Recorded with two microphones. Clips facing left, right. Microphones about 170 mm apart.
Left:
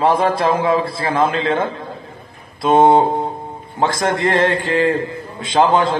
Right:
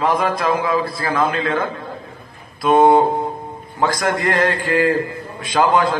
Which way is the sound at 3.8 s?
25° left (ahead or behind).